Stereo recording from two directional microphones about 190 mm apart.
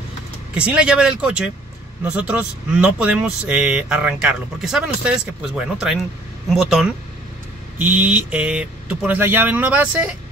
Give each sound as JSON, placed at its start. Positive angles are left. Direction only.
{"t": 0.6, "sound": "speech", "side_deg": -5}